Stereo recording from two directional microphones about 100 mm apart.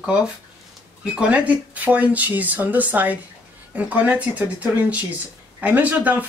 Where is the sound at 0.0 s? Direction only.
10° right (ahead or behind).